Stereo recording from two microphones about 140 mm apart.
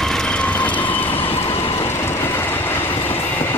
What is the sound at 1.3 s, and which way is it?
Train, 40° left (ahead or behind).